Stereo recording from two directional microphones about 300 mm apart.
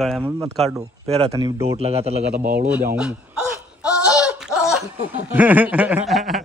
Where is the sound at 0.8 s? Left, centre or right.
Centre.